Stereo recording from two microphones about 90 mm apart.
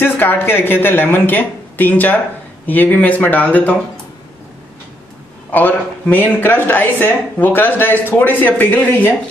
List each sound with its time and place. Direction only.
0.0 s speech: 20° left (ahead or behind)
5.5 s a man's voice: 20° left (ahead or behind)